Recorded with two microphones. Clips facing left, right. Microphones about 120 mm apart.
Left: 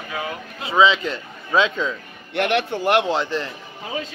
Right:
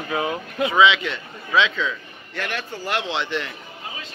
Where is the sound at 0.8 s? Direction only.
40° left (ahead or behind).